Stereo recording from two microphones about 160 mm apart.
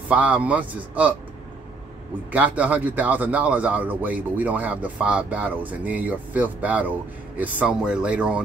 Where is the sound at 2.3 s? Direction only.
10° right (ahead or behind).